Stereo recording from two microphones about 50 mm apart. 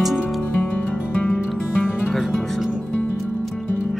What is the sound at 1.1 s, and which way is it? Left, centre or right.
Music, centre.